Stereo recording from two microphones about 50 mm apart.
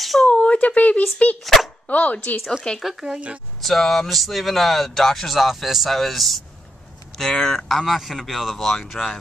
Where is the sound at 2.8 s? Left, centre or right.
Centre.